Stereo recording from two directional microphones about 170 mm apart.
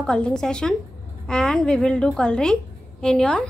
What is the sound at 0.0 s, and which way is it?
A woman's voice, 5° left (ahead or behind).